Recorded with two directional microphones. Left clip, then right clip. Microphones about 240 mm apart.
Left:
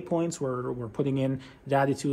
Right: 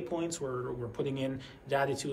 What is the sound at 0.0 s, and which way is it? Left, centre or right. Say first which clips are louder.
Speech: left 6 dB; left.